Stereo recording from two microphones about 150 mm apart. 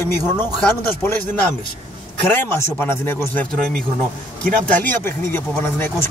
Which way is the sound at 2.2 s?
15° left (ahead or behind).